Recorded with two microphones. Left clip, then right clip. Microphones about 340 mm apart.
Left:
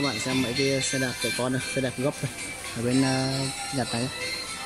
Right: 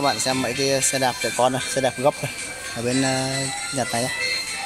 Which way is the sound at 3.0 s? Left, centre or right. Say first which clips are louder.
Right 3 dB; centre.